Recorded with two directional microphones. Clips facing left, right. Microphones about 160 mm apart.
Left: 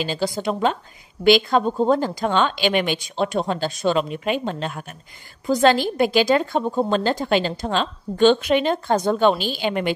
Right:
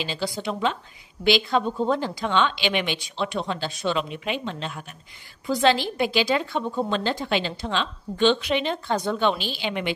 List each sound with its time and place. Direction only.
0.0 s a woman's voice: 45° left (ahead or behind)